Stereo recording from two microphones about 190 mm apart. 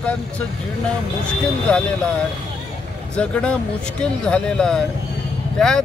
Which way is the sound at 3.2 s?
5° left (ahead or behind).